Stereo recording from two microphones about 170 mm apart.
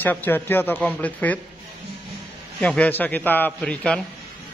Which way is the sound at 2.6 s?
5° left (ahead or behind).